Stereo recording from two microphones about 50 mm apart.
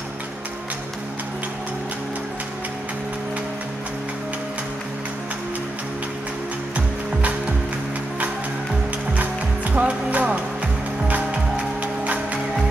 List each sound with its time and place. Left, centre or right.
9.1 s music: right